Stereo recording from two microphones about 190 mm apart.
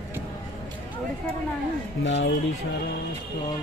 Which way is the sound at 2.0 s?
70° left (ahead or behind).